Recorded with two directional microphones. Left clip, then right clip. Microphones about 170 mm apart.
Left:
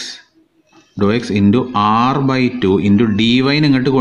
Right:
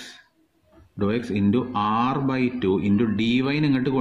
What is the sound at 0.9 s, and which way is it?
Speech, 20° left (ahead or behind).